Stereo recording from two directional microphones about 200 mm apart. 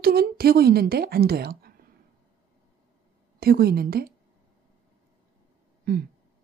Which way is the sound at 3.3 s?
50° right (ahead or behind).